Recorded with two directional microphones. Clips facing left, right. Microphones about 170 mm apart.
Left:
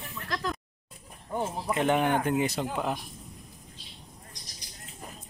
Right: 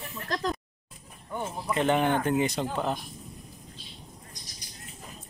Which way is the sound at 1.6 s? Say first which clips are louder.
Right 1 dB; 10° left (ahead or behind).